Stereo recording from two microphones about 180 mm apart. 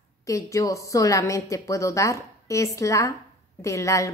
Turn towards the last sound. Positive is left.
turn(degrees=15)  # may be behind; listen again after turning